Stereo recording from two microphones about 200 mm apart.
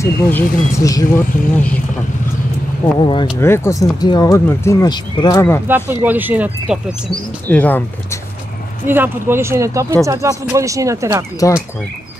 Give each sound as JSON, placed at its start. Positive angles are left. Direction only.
{"t": 0.0, "sound": "speech", "side_deg": 10}
{"t": 2.8, "sound": "speech", "side_deg": 25}
{"t": 3.3, "sound": "speech", "side_deg": 15}
{"t": 5.7, "sound": "speech", "side_deg": -10}
{"t": 7.4, "sound": "speech", "side_deg": 10}
{"t": 8.8, "sound": "speech", "side_deg": -10}
{"t": 11.3, "sound": "speech", "side_deg": 15}